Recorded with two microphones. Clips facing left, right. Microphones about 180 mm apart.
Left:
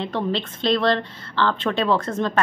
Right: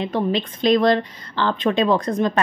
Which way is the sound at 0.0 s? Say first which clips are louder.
Right 3 dB; 15° right (ahead or behind).